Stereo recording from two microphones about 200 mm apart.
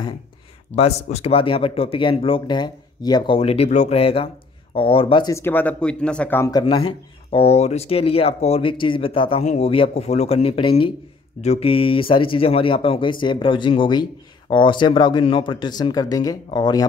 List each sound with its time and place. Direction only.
0.7 s speech: 30° left (ahead or behind); by 6.6 s 15° left (ahead or behind)
6.6 s speech: 25° left (ahead or behind)